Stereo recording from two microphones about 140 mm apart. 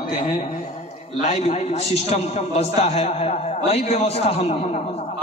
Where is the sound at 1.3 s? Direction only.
50° left (ahead or behind).